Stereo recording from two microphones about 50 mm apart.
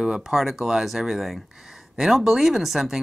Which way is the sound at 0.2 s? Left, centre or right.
Centre.